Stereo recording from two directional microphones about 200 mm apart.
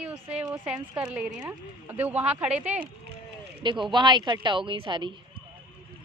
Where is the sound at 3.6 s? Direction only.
25° right (ahead or behind).